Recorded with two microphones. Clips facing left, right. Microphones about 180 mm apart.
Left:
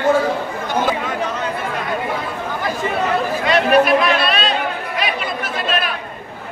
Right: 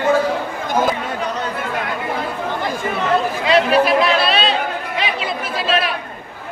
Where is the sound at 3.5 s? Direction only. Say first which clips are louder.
Even; 30° right (ahead or behind).